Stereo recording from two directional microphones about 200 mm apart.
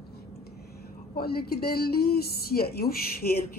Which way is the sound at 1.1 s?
50° left (ahead or behind).